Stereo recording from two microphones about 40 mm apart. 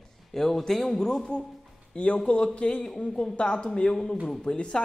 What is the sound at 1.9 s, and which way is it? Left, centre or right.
Speech, left.